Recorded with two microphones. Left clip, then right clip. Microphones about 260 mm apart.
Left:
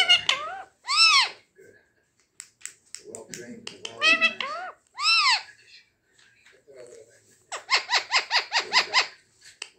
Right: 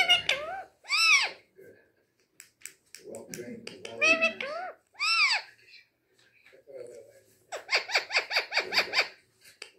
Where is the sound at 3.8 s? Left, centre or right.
Centre.